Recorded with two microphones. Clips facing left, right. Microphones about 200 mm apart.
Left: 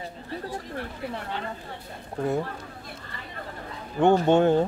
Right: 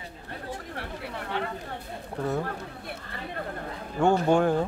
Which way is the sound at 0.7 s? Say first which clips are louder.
Left 3 dB; 65° right (ahead or behind).